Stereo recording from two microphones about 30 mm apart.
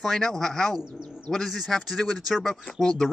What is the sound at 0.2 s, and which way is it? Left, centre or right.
Speech, centre.